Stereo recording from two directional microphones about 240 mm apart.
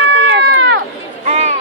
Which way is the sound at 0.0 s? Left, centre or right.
Right.